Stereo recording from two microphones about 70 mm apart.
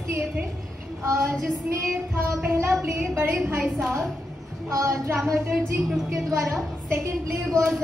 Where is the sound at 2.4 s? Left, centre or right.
Right.